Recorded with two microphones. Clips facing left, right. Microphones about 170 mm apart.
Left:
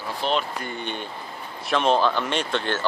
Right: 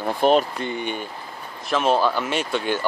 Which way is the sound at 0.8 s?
10° right (ahead or behind).